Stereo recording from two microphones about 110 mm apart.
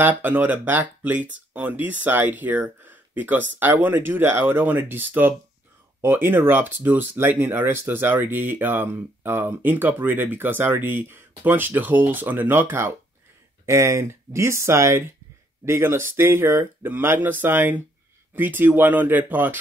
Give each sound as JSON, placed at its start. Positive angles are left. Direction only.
{"t": 0.0, "sound": "speech", "side_deg": -15}